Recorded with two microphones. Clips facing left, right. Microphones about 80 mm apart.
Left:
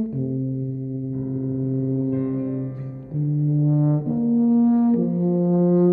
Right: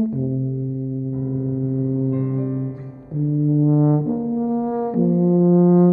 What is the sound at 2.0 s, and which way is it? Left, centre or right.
Music, centre.